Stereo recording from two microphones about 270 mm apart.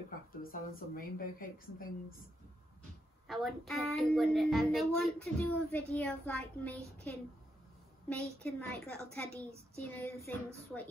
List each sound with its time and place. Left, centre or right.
0.4 s a woman's voice: left
3.3 s a woman's voice: centre